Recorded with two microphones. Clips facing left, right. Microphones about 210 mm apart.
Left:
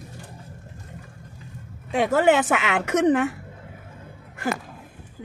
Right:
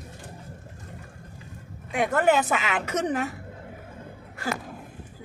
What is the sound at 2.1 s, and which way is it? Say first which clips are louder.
A woman's voice: left 3 dB; 90° left.